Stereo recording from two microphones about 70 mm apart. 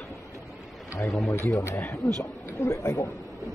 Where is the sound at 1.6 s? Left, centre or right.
Left.